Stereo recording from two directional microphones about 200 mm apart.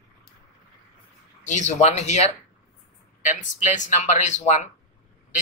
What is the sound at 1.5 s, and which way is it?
Speech, 35° left (ahead or behind).